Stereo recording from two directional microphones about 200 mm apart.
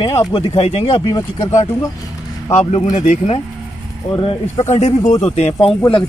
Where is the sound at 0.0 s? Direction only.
25° left (ahead or behind).